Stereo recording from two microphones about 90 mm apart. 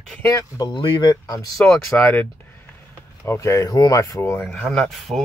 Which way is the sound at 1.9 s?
20° left (ahead or behind).